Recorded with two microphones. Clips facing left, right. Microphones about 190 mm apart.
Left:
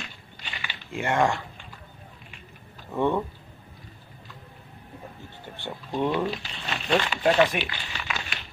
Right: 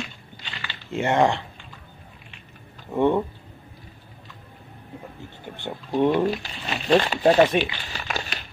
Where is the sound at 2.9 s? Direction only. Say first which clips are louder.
Right 4 dB; 15° right (ahead or behind).